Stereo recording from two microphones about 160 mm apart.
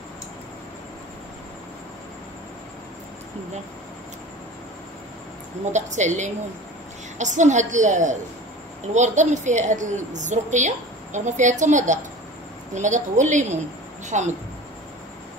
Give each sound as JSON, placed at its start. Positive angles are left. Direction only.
{"t": 5.7, "sound": "a woman's voice", "side_deg": -45}